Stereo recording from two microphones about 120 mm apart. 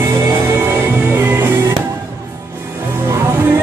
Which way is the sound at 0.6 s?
20° right (ahead or behind).